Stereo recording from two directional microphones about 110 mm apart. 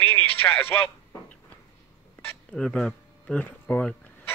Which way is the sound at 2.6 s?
10° left (ahead or behind).